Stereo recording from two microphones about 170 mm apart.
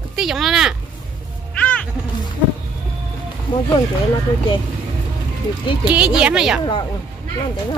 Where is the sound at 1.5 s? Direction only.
5° left (ahead or behind).